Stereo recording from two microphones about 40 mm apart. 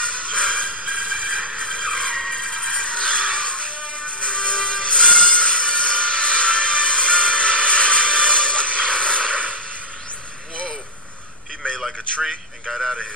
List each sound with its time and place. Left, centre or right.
0.3 s music: left
0.7 s music: right
1.7 s music: left
11.8 s a sound: centre